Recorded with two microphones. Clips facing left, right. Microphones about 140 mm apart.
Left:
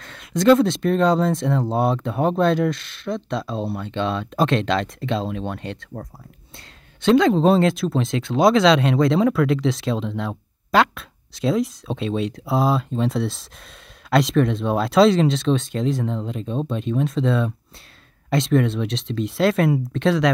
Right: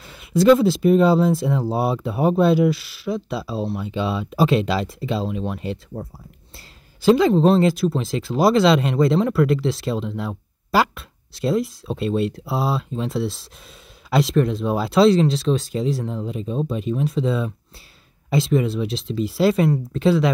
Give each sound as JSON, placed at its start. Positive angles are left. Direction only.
{"t": 0.0, "sound": "speech", "side_deg": -5}